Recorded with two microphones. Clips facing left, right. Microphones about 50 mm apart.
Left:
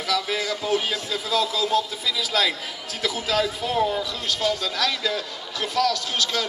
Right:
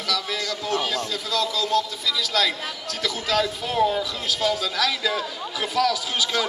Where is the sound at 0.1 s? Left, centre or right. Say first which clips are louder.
Left 2 dB; centre.